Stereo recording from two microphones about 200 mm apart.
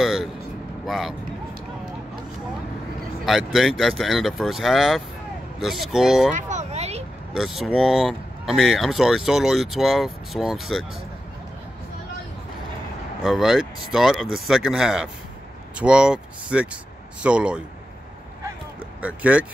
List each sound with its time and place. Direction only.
0.0 s speech: centre (ahead or behind)
3.3 s speech: centre (ahead or behind)
6.3 s a sound: 35° right (ahead or behind)
7.3 s speech: centre (ahead or behind)
13.2 s speech: centre (ahead or behind)
18.4 s a sound: 5° right (ahead or behind)